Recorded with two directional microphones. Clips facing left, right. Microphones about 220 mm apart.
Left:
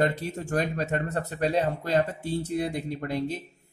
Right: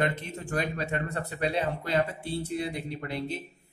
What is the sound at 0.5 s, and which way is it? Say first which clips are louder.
Speech: left 3 dB; 45° left (ahead or behind).